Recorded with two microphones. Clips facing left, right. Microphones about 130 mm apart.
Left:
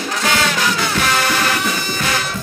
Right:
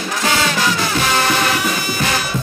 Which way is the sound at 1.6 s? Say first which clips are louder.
Right 1 dB; 5° right (ahead or behind).